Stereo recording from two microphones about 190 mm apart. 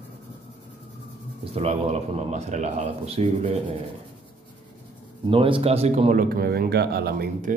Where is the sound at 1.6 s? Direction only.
30° right (ahead or behind).